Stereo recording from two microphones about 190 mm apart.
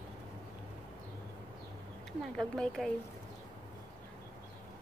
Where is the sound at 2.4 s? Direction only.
5° left (ahead or behind).